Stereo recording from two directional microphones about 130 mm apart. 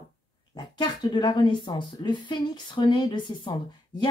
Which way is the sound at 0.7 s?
35° left (ahead or behind).